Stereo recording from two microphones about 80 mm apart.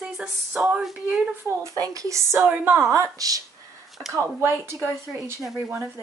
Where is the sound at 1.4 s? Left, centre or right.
Right.